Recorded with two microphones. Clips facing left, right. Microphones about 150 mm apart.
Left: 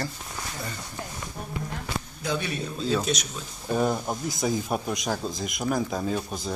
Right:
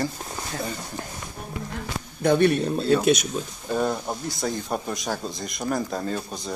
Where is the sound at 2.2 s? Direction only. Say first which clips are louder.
Right 12 dB; 60° right (ahead or behind).